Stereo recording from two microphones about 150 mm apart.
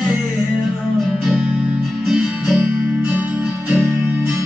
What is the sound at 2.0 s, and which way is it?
Music, 5° right (ahead or behind).